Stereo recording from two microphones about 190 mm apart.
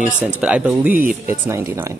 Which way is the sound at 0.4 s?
5° right (ahead or behind).